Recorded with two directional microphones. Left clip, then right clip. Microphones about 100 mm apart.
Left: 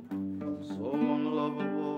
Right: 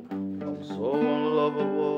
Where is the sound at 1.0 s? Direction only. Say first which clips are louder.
Right 6 dB; 10° right (ahead or behind).